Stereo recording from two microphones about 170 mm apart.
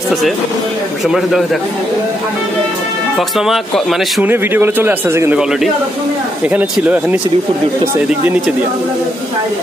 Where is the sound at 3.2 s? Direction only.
Centre (ahead or behind).